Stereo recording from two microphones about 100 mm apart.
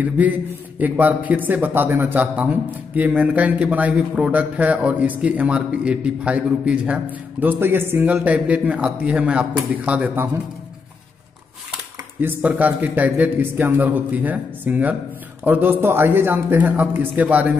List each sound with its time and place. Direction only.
0.7 s a man's voice: 15° right (ahead or behind)
12.2 s a man's voice: 20° right (ahead or behind)